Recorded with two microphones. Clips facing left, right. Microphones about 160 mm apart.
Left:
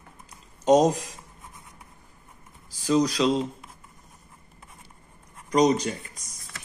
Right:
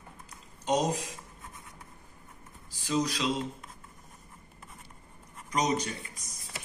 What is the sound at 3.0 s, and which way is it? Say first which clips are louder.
Speech: left 8 dB; 35° left (ahead or behind).